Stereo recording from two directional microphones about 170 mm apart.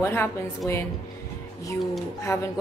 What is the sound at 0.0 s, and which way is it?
Speech, 15° left (ahead or behind).